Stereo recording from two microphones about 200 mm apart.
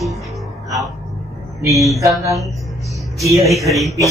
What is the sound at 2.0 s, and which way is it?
Speech, 15° right (ahead or behind).